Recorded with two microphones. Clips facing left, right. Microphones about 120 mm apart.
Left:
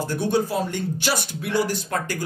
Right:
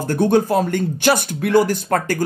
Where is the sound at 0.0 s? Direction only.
50° right (ahead or behind).